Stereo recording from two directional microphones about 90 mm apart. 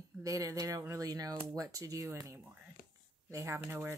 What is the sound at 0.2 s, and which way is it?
Speech, 40° right (ahead or behind).